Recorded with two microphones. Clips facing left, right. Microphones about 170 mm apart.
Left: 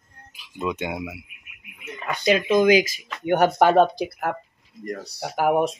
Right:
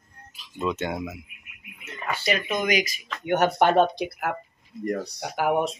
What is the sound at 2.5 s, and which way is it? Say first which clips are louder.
Speech: left 11 dB; 90° left.